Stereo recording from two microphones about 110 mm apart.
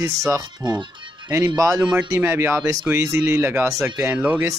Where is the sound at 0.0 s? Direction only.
30° right (ahead or behind).